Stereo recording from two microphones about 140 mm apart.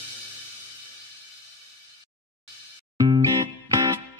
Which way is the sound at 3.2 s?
25° right (ahead or behind).